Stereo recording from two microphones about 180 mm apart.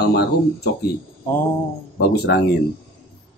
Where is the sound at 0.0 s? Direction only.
65° left (ahead or behind).